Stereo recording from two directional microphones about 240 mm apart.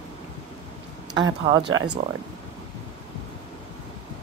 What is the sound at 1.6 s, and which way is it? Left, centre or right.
Speech, right.